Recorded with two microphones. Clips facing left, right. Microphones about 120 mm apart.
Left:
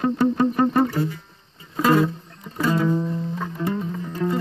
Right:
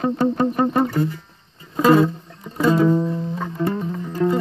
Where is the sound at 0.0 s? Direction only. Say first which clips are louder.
Even; 15° right (ahead or behind).